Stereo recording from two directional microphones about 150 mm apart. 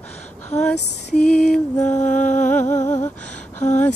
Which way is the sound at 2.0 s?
55° left (ahead or behind).